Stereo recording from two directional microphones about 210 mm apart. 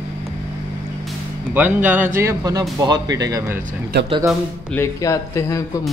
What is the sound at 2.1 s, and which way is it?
Speech, 15° right (ahead or behind).